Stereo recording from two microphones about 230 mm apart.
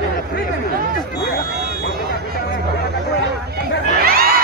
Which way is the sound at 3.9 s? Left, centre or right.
Right.